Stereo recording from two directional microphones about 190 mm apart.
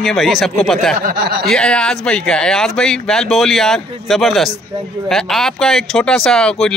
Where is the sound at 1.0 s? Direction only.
55° right (ahead or behind).